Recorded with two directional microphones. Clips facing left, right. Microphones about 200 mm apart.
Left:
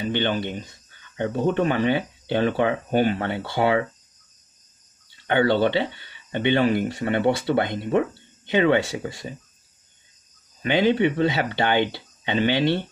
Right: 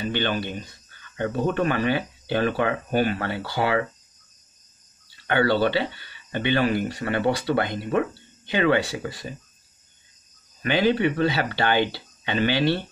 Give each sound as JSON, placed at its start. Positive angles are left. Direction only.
{"t": 0.0, "sound": "speech", "side_deg": 20}
{"t": 5.2, "sound": "speech", "side_deg": 20}
{"t": 10.6, "sound": "speech", "side_deg": 20}